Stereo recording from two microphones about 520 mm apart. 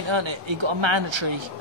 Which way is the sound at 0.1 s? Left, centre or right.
Right.